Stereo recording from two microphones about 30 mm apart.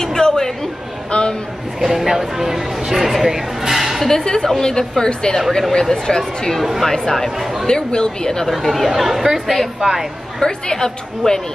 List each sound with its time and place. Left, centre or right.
0.0 s a sound: left
1.1 s a man's voice: left
1.8 s speech: centre
4.1 s a woman's voice: left
5.6 s speech: centre
6.0 s a woman's voice: left
7.2 s speech: centre
7.6 s a woman's voice: left
8.8 s speech: centre
10.4 s a woman's voice: left